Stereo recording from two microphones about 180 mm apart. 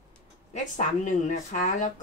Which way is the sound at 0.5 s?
45° left (ahead or behind).